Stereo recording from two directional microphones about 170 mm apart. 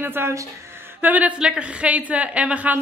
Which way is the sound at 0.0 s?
15° right (ahead or behind).